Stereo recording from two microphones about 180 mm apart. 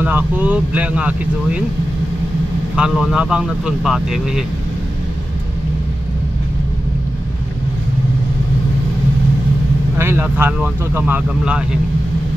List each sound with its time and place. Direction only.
0.0 s speech: 10° right (ahead or behind)
2.7 s speech: 5° right (ahead or behind)
9.9 s speech: 10° right (ahead or behind)